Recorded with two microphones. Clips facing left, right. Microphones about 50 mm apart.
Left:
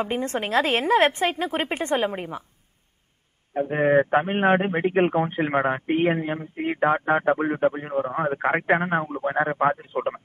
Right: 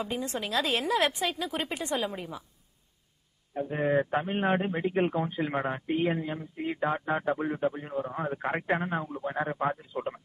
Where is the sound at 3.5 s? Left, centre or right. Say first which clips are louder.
Left 7 dB; left.